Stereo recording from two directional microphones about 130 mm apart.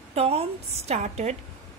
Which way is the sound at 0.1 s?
50° right (ahead or behind).